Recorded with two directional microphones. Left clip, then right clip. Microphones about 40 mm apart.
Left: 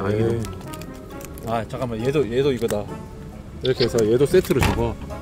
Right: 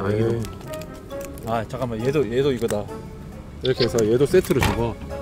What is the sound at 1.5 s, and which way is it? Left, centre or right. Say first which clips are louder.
Speech: even; centre.